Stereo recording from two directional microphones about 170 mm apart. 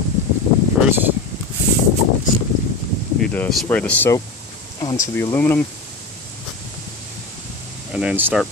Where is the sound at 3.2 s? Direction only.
5° left (ahead or behind).